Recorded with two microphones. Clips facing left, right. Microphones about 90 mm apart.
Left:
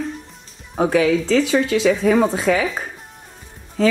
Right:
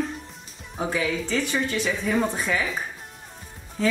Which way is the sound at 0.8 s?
80° left.